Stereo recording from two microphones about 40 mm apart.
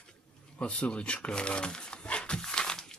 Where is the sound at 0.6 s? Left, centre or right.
Left.